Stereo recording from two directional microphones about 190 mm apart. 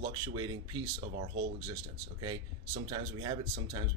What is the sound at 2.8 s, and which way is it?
Speech, 25° right (ahead or behind).